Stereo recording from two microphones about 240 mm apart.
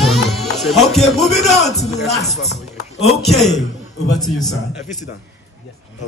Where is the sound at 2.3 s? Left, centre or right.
Left.